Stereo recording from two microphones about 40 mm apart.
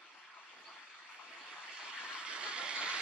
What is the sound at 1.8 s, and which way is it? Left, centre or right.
Vehicle, right.